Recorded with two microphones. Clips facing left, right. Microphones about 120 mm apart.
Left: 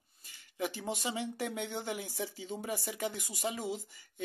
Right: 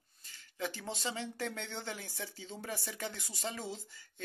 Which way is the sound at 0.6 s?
15° left (ahead or behind).